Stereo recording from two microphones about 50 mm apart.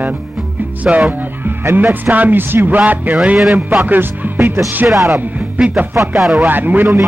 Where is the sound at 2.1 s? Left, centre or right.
Right.